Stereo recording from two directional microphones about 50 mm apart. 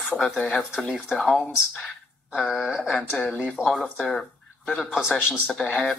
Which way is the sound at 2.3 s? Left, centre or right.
Centre.